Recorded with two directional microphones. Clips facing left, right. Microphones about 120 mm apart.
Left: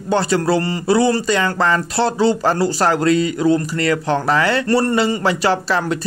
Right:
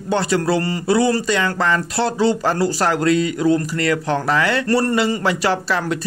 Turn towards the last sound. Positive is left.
turn(degrees=30)  # may be behind; listen again after turning